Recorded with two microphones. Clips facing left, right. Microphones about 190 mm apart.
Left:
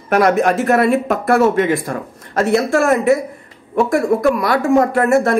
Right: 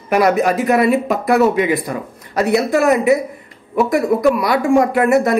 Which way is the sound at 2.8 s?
45° left (ahead or behind).